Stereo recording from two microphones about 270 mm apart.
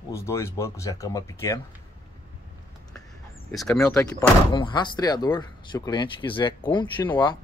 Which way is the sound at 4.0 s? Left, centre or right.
Centre.